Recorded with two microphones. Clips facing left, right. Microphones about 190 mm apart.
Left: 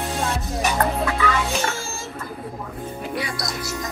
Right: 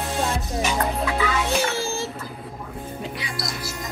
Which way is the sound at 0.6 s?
55° left (ahead or behind).